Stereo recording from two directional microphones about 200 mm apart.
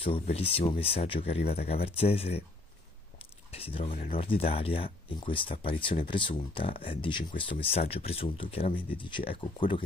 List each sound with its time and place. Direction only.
0.0 s speech: 30° left (ahead or behind)
3.5 s speech: 30° left (ahead or behind)